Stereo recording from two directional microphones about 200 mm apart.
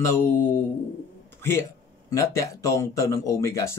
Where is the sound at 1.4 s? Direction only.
10° left (ahead or behind).